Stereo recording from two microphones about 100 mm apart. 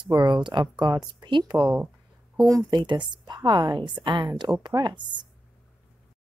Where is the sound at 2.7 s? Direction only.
50° right (ahead or behind).